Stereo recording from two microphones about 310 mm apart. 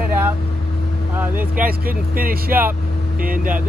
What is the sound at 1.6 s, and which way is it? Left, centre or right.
Speech, right.